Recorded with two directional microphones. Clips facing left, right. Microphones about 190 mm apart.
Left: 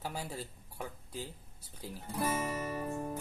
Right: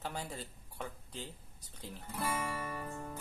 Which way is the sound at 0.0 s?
10° left (ahead or behind).